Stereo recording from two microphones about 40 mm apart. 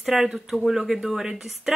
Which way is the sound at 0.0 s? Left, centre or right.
Centre.